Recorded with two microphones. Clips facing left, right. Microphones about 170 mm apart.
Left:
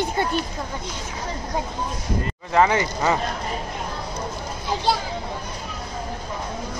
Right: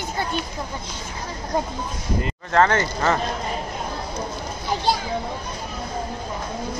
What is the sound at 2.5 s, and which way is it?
Speech, 10° left (ahead or behind).